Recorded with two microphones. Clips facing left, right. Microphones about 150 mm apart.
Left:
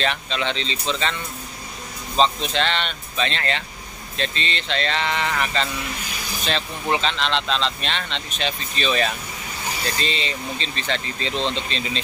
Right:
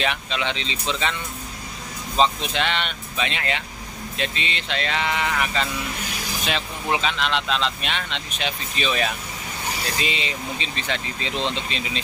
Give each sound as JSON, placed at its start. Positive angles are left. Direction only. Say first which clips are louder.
{"t": 0.0, "sound": "speech", "louder": "left 1 dB", "side_deg": -10}
{"t": 2.1, "sound": "speech", "louder": "left 1 dB", "side_deg": -10}